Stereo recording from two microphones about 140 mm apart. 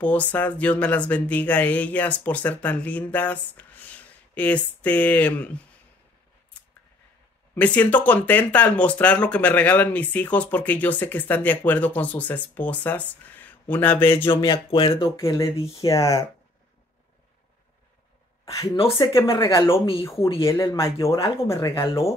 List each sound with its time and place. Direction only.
0.0 s speech: 10° left (ahead or behind)
6.5 s scissors: 10° left (ahead or behind)
7.5 s speech: 10° left (ahead or behind)
14.2 s speech: 35° left (ahead or behind)
15.0 s speech: 20° left (ahead or behind)
18.4 s a sound: 25° left (ahead or behind)
18.9 s speech: 20° left (ahead or behind)
19.2 s speech: 30° left (ahead or behind)
20.0 s speech: 20° left (ahead or behind)